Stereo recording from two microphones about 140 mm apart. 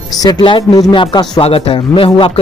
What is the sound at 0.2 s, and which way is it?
Speech, 30° left (ahead or behind).